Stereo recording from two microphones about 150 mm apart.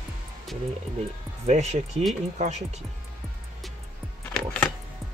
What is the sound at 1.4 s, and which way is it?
Speech, 50° right (ahead or behind).